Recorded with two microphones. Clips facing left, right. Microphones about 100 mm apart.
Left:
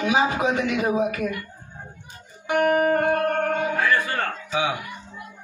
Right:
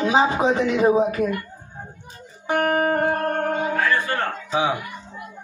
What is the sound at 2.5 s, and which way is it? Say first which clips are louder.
Speech: left 1 dB; 40° right (ahead or behind).